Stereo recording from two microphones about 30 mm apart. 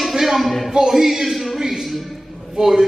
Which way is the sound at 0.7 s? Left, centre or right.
Right.